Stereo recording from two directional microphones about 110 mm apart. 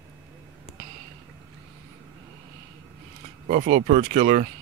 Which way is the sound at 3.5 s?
75° right (ahead or behind).